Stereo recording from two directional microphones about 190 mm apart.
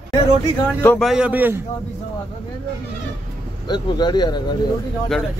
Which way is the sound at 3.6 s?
25° left (ahead or behind).